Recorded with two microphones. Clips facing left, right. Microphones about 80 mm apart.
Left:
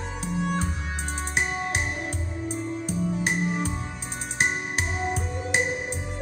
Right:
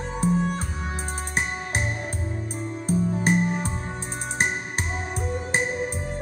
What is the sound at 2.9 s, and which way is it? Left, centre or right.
Music, right.